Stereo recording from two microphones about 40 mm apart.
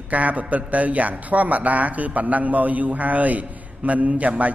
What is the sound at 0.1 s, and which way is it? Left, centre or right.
Speech, right.